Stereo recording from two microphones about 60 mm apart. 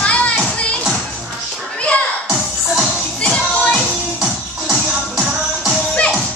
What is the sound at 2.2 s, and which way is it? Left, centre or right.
Music, centre.